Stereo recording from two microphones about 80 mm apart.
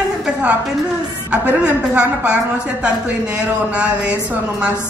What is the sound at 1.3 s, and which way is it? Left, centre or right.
Speech, centre.